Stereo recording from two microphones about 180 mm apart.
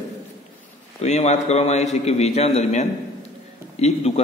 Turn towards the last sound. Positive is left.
turn(degrees=35)  # may be behind; listen again after turning